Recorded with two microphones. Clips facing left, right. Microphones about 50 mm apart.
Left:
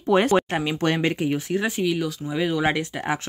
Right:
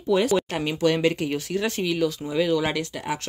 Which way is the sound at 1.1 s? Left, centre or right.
Centre.